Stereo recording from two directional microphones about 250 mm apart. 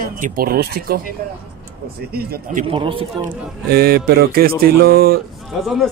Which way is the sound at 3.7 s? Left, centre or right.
Right.